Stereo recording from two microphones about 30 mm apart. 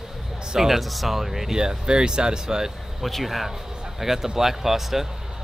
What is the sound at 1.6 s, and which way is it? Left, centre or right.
Speech, right.